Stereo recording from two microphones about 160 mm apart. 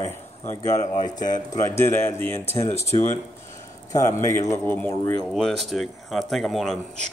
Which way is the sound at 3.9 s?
15° left (ahead or behind).